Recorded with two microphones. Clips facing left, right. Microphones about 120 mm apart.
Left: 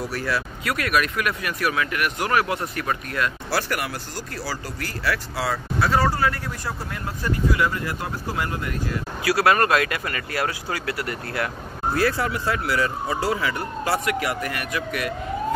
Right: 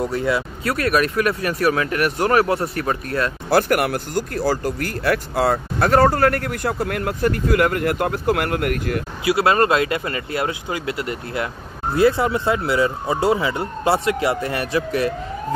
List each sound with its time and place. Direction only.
0.0 s speech: 20° right (ahead or behind)
0.7 s speech: 35° right (ahead or behind)
3.4 s speech: 50° right (ahead or behind)
9.2 s speech: 25° right (ahead or behind)